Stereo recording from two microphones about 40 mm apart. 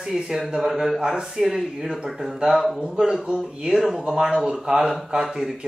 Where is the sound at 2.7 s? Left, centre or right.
Right.